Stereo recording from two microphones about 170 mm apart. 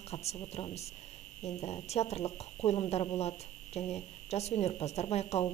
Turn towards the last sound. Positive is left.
turn(degrees=35)  # may be behind; listen again after turning